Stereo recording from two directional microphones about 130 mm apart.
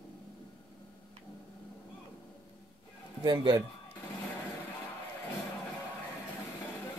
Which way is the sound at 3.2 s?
30° right (ahead or behind).